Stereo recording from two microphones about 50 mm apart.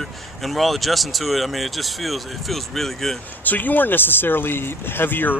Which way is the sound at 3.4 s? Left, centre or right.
Left.